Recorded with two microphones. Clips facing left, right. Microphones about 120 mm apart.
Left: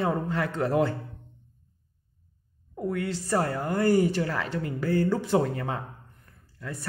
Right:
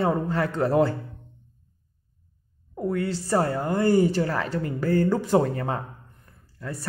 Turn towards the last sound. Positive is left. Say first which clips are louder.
# right 3 dB
turn(degrees=-35)  # may be behind; listen again after turning